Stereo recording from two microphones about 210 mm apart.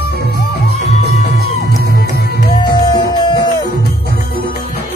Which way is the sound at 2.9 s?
20° left (ahead or behind).